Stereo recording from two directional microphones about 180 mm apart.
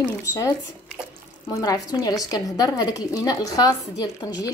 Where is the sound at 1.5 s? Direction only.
20° left (ahead or behind).